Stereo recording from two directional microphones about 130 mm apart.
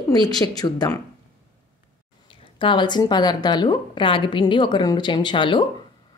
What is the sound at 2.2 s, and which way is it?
Speech, 40° left (ahead or behind).